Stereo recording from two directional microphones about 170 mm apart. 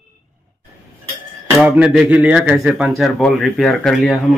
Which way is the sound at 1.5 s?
10° right (ahead or behind).